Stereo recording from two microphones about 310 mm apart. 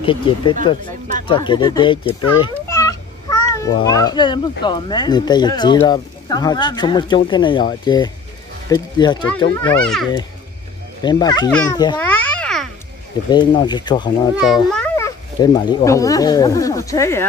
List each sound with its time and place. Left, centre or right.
0.0 s a child's voice: centre
11.0 s a child's voice: centre
13.3 s speech: centre